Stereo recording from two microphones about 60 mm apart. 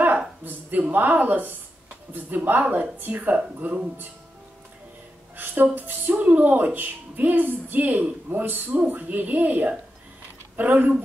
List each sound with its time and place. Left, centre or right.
0.5 s a woman's voice: right
5.4 s speech: right
5.8 s music: right
6.2 s a woman's voice: right